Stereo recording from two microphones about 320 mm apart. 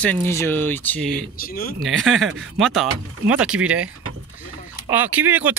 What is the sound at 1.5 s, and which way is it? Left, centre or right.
Speech, left.